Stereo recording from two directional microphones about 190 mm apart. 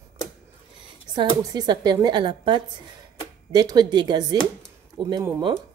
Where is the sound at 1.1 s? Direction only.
20° right (ahead or behind).